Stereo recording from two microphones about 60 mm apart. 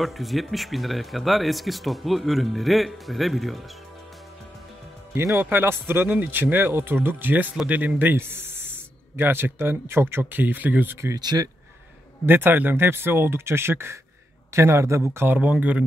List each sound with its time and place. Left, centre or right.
0.0 s speech: centre
5.1 s speech: right
11.3 s speech: right
12.3 s speech: right
15.2 s speech: right